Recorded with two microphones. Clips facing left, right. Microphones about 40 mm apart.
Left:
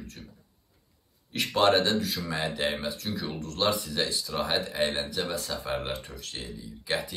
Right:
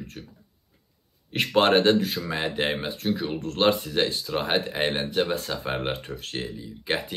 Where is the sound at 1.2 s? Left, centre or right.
Right.